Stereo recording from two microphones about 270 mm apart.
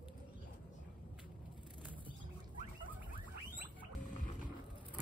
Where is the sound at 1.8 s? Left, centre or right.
Centre.